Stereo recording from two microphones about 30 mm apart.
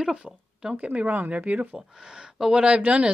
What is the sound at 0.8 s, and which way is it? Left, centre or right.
Speech, right.